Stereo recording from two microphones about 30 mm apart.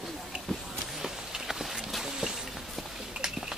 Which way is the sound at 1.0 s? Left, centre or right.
Centre.